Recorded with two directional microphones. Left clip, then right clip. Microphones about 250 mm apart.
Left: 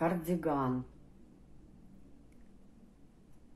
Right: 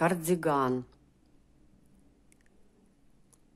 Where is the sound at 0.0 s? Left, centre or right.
Right.